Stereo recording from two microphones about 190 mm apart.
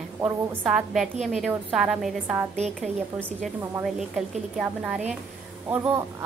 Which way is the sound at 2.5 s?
35° right (ahead or behind).